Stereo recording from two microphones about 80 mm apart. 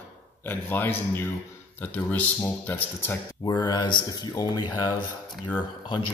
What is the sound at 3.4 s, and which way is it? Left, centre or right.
Speech, left.